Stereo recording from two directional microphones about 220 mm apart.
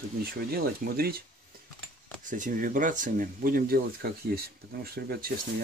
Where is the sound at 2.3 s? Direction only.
35° right (ahead or behind).